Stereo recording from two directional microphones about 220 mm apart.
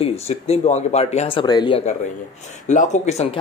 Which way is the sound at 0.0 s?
30° left (ahead or behind).